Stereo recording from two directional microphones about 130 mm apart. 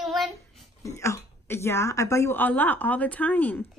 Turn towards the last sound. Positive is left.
turn(degrees=15)  # may be behind; listen again after turning